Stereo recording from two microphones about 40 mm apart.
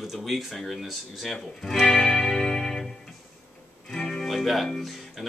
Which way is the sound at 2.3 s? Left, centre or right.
Centre.